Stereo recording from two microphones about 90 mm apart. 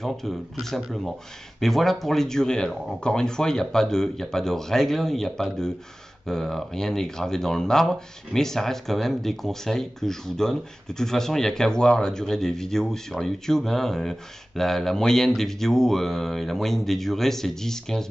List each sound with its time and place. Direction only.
0.0 s speech: 5° left (ahead or behind)